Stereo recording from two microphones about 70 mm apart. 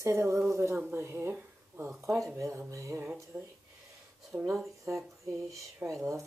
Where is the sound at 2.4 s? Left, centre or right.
Right.